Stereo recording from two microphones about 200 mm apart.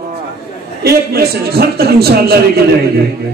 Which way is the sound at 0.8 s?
50° right (ahead or behind).